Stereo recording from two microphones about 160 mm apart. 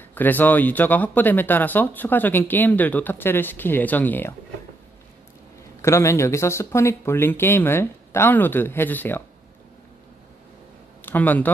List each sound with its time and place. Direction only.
0.1 s speech: 10° left (ahead or behind)
5.8 s speech: 15° left (ahead or behind)
11.0 s speech: 10° left (ahead or behind)